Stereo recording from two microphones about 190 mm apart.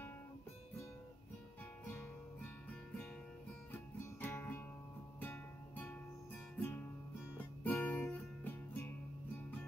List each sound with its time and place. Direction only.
3.7 s music: 10° left (ahead or behind)
7.3 s music: 10° left (ahead or behind)